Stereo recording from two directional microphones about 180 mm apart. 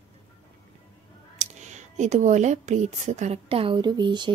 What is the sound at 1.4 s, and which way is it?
Speech, 40° right (ahead or behind).